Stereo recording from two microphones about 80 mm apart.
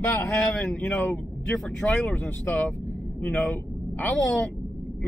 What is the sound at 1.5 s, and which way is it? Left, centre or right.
Speech, centre.